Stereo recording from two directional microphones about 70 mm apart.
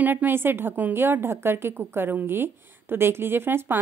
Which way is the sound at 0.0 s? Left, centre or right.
Right.